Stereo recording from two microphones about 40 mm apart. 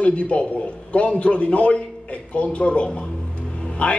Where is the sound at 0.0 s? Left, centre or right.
Left.